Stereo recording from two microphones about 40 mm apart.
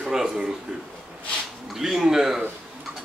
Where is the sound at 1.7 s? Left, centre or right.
Centre.